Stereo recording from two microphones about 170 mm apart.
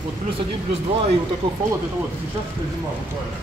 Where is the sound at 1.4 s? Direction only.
30° right (ahead or behind).